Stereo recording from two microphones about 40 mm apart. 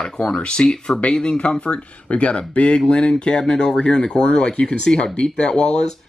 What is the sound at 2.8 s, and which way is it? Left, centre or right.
Speech, left.